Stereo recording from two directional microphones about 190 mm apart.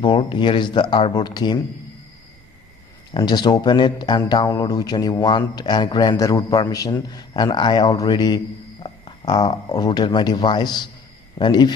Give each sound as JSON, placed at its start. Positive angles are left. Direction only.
{"t": 0.0, "sound": "speech", "side_deg": 25}
{"t": 3.1, "sound": "speech", "side_deg": 25}